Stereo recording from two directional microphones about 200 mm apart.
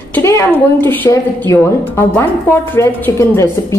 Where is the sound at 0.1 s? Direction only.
15° left (ahead or behind).